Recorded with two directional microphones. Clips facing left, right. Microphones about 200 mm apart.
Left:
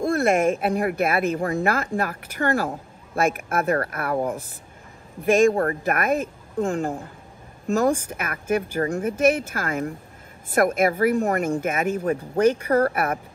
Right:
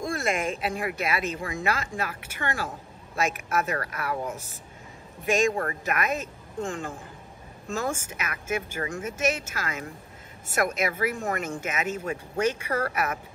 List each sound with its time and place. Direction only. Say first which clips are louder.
0.1 s speech: left 9 dB; 55° left (ahead or behind)
5.5 s speech: left 6 dB; 40° left (ahead or behind)
6.7 s a woman's voice: left 8 dB; 35° left (ahead or behind); by 13.2 s 50° left (ahead or behind)